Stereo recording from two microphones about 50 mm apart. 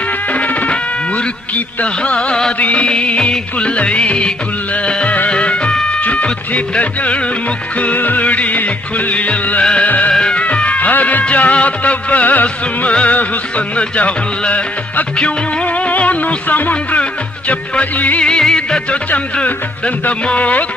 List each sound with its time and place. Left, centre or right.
0.3 s music: left
2.1 s music of bollywood: centre
2.6 s music: left
18.4 s music: centre
19.4 s music: left